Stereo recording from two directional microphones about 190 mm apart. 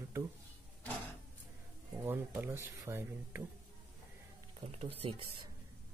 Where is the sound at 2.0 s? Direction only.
10° right (ahead or behind).